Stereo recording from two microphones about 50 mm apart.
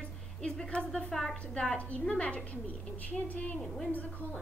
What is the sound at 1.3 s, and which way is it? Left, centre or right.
A man's voice, left.